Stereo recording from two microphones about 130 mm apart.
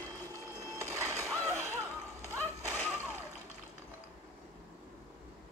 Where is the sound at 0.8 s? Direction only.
25° right (ahead or behind).